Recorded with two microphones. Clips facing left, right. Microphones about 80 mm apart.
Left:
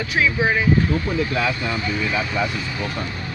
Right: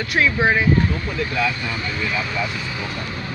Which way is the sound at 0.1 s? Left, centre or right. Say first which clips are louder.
Right 2 dB; centre.